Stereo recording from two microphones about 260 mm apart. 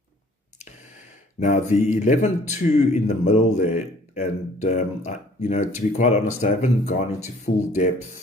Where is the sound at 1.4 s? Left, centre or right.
Left.